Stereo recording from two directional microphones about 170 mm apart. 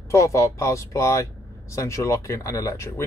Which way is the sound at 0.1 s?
15° left (ahead or behind).